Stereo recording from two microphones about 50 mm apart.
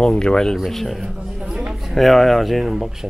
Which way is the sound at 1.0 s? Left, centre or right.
Centre.